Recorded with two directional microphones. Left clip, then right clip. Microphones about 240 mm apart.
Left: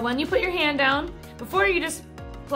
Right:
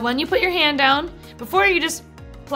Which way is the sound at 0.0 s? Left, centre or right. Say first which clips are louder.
Right 4 dB; right.